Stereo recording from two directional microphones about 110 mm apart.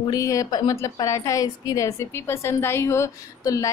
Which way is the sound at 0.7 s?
30° left (ahead or behind).